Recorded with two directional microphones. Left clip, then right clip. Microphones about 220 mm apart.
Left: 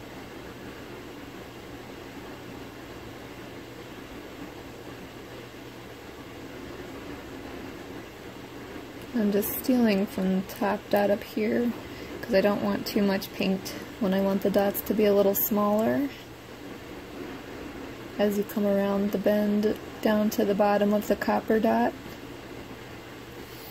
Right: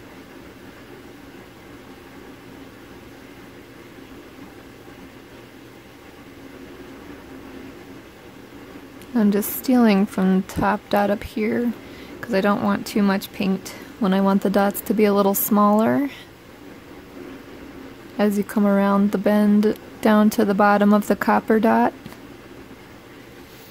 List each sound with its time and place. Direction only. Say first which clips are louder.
9.3 s speech: right 3 dB; 30° right (ahead or behind)
18.1 s speech: right 5 dB; 35° right (ahead or behind)